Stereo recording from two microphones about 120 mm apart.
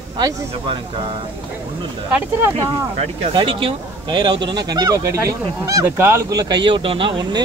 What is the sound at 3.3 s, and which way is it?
Speech, 45° right (ahead or behind).